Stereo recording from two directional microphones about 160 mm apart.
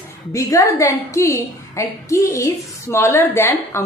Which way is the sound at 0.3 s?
20° left (ahead or behind).